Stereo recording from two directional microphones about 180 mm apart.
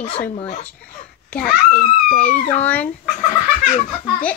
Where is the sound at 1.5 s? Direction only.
50° left (ahead or behind).